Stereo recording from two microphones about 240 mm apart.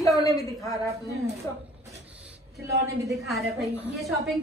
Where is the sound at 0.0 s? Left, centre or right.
Centre.